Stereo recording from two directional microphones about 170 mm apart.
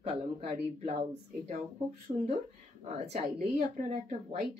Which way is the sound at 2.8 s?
40° right (ahead or behind).